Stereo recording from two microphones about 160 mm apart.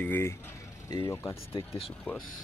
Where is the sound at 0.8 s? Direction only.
25° left (ahead or behind).